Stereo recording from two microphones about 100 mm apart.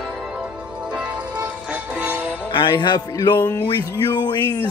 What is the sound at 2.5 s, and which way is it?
Speech, 50° left (ahead or behind).